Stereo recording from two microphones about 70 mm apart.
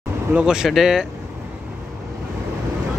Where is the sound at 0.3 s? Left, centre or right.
Centre.